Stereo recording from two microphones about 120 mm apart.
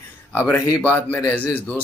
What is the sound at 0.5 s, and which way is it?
Speech, 30° left (ahead or behind).